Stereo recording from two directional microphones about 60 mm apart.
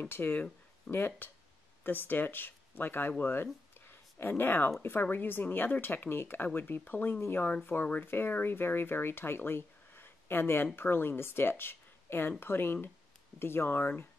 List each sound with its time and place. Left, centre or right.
0.0 s speech: left